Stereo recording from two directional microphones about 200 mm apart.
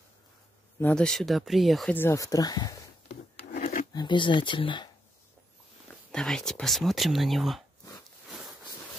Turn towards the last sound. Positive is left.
turn(degrees=0)  # may be behind; listen again after turning